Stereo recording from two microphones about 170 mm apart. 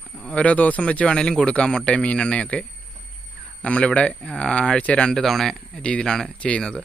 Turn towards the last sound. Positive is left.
turn(degrees=5)  # may be behind; listen again after turning